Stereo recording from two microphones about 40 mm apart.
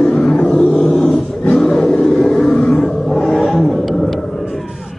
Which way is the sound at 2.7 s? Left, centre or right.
Left.